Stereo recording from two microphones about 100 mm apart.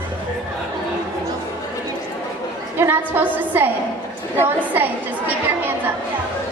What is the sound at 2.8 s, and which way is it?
Speech, 20° right (ahead or behind).